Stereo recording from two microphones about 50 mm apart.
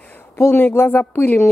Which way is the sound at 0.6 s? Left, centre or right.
Left.